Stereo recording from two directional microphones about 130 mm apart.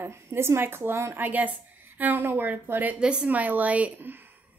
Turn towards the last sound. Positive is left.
turn(degrees=-15)  # may be behind; listen again after turning